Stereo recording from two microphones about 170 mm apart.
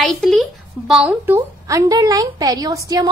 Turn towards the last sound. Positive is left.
turn(degrees=-20)  # may be behind; listen again after turning